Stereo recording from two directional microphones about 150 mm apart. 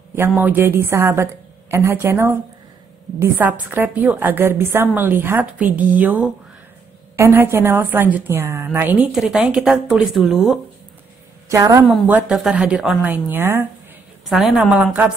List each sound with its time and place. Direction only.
0.4 s a woman's voice: 15° right (ahead or behind)
11.4 s a woman's voice: 20° right (ahead or behind)
11.9 s a woman's voice: 10° right (ahead or behind)
14.3 s a woman's voice: centre (ahead or behind)